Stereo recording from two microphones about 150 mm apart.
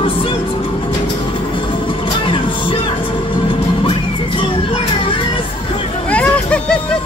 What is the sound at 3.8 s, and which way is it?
Music, 35° left (ahead or behind).